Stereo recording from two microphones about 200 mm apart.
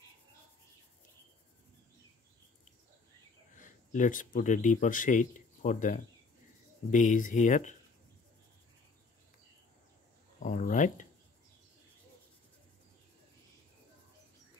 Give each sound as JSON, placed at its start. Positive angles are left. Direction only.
{"t": 3.5, "sound": "speech", "side_deg": 40}
{"t": 10.4, "sound": "speech", "side_deg": 40}